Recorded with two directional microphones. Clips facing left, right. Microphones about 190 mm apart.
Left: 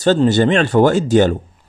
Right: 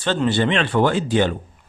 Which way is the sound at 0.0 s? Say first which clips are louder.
Left 7 dB; 40° left (ahead or behind).